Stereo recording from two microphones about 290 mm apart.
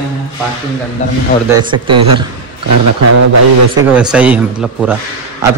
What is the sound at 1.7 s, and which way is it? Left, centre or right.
Speech, right.